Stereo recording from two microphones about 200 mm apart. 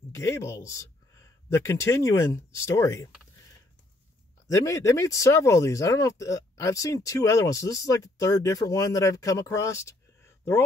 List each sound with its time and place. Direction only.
0.1 s speech: 15° left (ahead or behind)
4.5 s speech: 15° left (ahead or behind)